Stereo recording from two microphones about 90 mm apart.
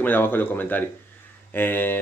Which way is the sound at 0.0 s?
20° left (ahead or behind).